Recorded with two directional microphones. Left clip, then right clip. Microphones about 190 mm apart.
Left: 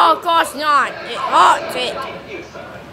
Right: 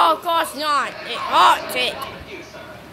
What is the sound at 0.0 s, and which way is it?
A man's voice, 5° right (ahead or behind).